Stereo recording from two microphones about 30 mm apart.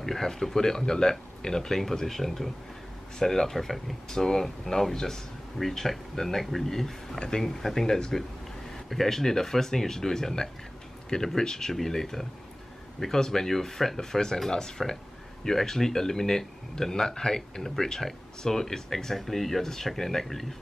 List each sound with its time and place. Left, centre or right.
0.0 s speech: centre
4.1 s speech: centre
7.2 s speech: left